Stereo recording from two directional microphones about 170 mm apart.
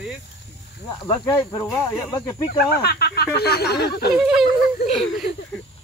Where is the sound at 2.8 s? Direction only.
65° left (ahead or behind).